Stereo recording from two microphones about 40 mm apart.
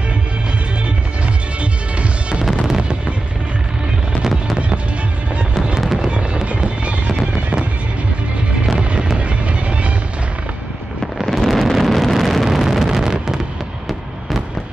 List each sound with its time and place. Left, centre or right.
1.6 s music: right
5.9 s music: right
8.7 s music: right
11.2 s wind noise: centre
12.4 s a sound: centre